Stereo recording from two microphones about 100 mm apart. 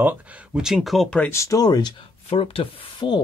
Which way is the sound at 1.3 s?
30° left (ahead or behind).